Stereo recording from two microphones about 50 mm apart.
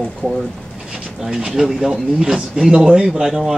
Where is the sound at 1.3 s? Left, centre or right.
Centre.